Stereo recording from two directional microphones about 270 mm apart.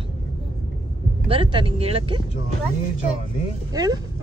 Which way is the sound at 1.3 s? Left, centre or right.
Centre.